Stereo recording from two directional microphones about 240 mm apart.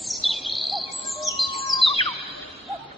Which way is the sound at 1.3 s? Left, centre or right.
Centre.